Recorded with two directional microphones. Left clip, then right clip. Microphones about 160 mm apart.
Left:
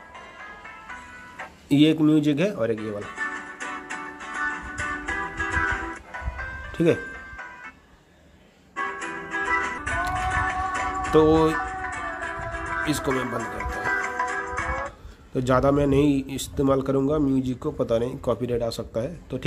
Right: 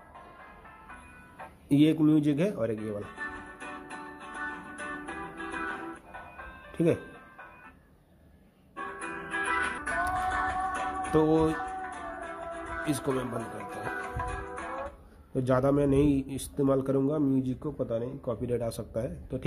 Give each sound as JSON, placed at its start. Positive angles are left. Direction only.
{"t": 1.4, "sound": "music", "side_deg": 5}
{"t": 8.7, "sound": "music", "side_deg": 0}
{"t": 15.3, "sound": "a man's voice", "side_deg": 5}
{"t": 17.8, "sound": "a man's voice", "side_deg": 25}
{"t": 18.4, "sound": "a man's voice", "side_deg": 5}